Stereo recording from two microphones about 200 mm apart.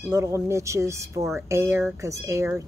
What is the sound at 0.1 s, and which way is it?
A woman's voice, 15° right (ahead or behind).